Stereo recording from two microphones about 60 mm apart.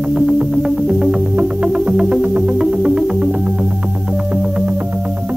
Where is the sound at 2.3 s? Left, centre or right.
Centre.